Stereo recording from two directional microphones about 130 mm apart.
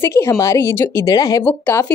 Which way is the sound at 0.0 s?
20° left (ahead or behind).